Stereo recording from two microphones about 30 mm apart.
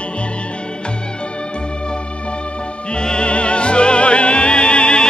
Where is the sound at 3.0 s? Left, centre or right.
Left.